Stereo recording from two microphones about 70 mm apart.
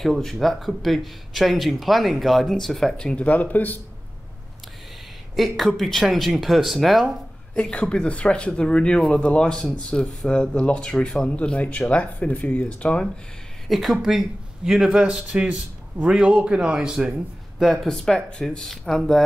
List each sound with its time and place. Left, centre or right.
0.0 s speech: centre; by 3.8 s left
5.3 s speech: centre
7.5 s speech: centre
13.7 s speech: centre